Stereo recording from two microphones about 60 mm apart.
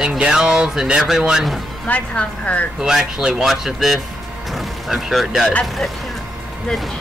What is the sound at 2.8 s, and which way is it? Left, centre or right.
Speech, centre.